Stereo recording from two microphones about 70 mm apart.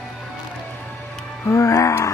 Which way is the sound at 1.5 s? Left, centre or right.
Left.